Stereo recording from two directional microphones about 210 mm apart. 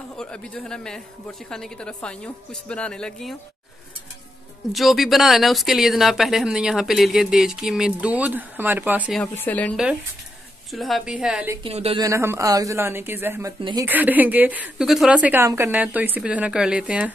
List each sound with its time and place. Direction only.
0.2 s speech: 5° left (ahead or behind)
4.7 s speech: centre (ahead or behind)
9.2 s speech: 5° left (ahead or behind)
11.6 s speech: 25° right (ahead or behind)
12.0 s a woman's voice: 15° right (ahead or behind)